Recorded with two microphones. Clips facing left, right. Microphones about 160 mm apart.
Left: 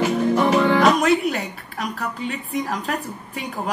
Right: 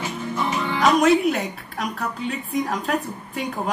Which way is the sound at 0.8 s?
Centre (ahead or behind).